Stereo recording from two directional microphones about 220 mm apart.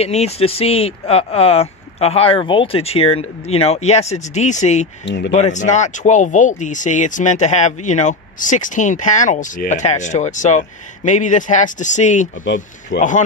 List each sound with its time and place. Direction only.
0.0 s speech: 30° left (ahead or behind)
5.0 s speech: 50° left (ahead or behind)
5.3 s speech: 30° left (ahead or behind)
12.9 s speech: 50° left (ahead or behind)